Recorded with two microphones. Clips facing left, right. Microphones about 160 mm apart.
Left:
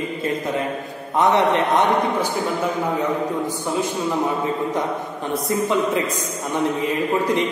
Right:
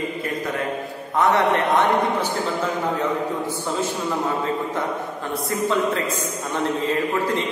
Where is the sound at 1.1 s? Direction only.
20° left (ahead or behind).